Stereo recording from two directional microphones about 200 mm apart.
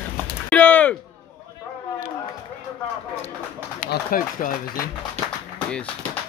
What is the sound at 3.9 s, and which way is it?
Speech, 45° left (ahead or behind).